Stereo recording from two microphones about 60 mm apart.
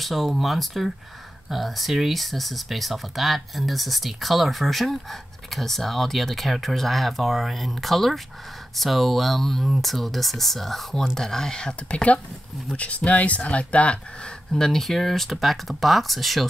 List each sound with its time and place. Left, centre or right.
0.0 s speech: centre